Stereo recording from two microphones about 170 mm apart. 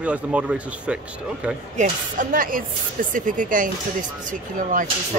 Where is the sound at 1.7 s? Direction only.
50° right (ahead or behind).